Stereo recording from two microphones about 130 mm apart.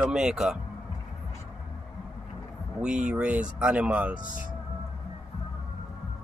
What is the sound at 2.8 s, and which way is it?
Speech, 5° right (ahead or behind).